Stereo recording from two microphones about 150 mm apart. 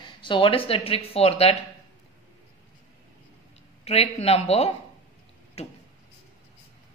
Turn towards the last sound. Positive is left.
turn(degrees=45)  # may be behind; listen again after turning